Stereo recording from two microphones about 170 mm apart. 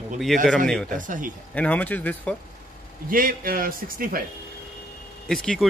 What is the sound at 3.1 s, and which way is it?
A man's voice, 55° right (ahead or behind).